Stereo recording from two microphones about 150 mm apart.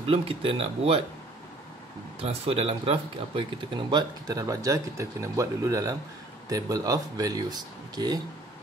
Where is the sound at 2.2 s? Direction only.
40° right (ahead or behind); by 8.2 s 25° right (ahead or behind).